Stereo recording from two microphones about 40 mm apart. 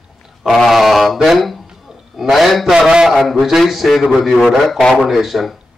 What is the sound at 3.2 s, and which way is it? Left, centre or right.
Speech, centre.